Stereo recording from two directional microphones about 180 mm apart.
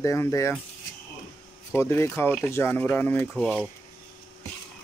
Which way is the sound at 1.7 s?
15° left (ahead or behind).